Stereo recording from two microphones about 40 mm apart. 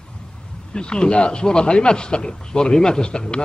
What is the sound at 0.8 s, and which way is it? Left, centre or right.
Speech, left.